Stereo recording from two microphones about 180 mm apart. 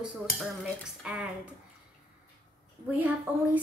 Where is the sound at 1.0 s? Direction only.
5° right (ahead or behind).